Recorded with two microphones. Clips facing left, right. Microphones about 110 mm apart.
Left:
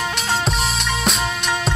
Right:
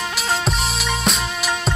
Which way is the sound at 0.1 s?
Centre (ahead or behind).